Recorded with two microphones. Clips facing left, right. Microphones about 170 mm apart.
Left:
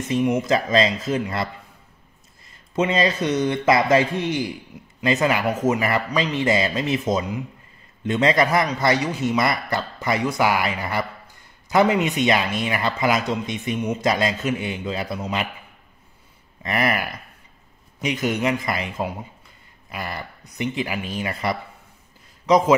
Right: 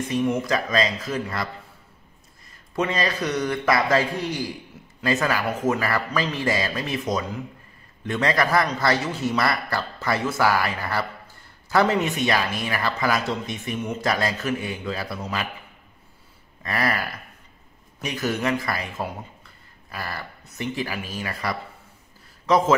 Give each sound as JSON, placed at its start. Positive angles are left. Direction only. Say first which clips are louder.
{"t": 0.4, "sound": "speech", "louder": "left 4 dB", "side_deg": 25}
{"t": 2.7, "sound": "speech", "louder": "left 4 dB", "side_deg": 20}
{"t": 16.6, "sound": "speech", "louder": "left 3 dB", "side_deg": 20}